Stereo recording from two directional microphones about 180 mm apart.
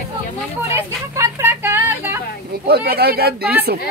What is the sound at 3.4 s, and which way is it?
Speech, 10° right (ahead or behind).